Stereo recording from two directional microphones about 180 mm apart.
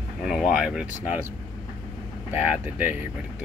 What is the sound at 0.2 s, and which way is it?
Speech, centre (ahead or behind).